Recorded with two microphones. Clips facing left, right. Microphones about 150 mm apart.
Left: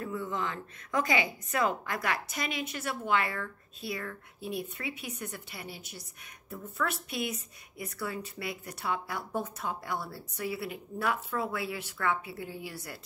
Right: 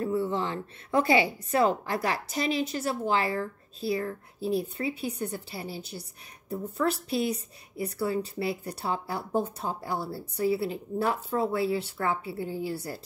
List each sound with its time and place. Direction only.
0.0 s a woman's voice: 30° right (ahead or behind)